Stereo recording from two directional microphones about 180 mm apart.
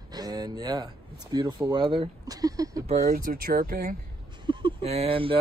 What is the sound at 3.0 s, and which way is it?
Speech, 55° right (ahead or behind).